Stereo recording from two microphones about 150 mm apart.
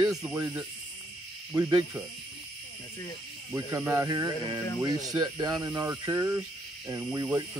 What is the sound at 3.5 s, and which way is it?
Speech, 15° right (ahead or behind).